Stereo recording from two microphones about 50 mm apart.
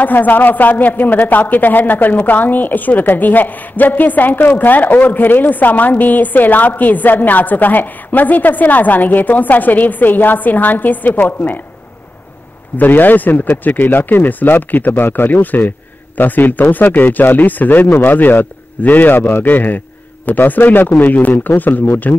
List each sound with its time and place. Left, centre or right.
0.0 s a woman's voice: left
12.7 s a woman's voice: left